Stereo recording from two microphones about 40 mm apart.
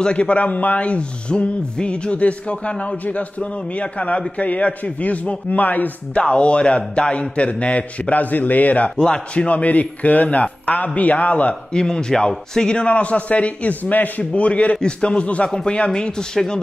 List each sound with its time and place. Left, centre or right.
0.0 s speech: left
6.1 s speech: left
11.7 s speech: centre; by 14.4 s left
14.4 s a man's voice: left